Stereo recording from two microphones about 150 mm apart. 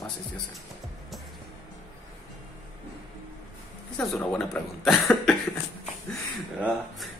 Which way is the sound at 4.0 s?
5° left (ahead or behind).